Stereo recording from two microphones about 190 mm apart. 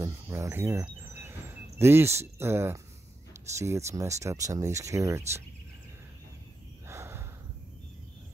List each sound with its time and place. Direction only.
0.0 s cricket: 15° right (ahead or behind)
1.8 s speech: 10° right (ahead or behind)
6.9 s snort: 15° right (ahead or behind)